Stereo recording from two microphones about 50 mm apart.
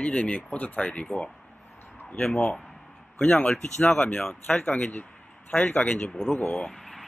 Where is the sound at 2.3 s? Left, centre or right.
Left.